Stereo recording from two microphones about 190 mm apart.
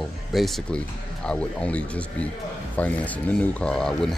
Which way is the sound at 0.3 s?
Centre (ahead or behind).